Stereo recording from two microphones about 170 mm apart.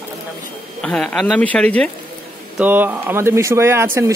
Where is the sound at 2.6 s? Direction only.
10° right (ahead or behind).